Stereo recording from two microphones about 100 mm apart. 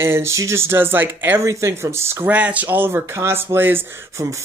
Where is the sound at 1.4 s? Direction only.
30° right (ahead or behind).